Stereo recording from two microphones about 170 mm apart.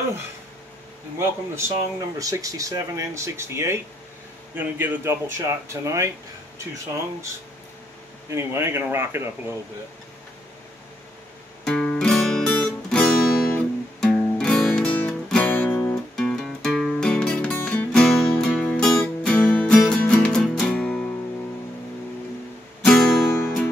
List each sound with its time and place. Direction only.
1.2 s speech: 15° right (ahead or behind)
8.3 s speech: 15° right (ahead or behind)
11.6 s music: 5° left (ahead or behind)
22.8 s music: 5° left (ahead or behind)